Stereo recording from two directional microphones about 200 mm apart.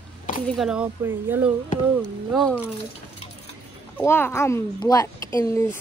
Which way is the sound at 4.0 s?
10° left (ahead or behind).